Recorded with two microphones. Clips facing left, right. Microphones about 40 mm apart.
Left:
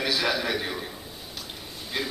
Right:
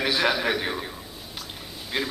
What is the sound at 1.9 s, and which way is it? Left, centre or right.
Speech, centre.